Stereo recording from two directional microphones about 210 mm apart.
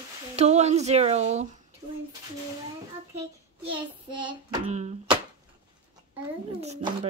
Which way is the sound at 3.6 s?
25° right (ahead or behind).